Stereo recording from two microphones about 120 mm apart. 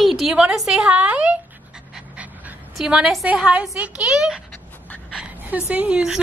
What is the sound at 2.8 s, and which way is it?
A woman's voice, 5° right (ahead or behind).